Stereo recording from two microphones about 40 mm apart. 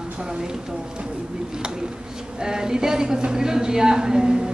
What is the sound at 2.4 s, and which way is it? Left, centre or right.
Speech, centre.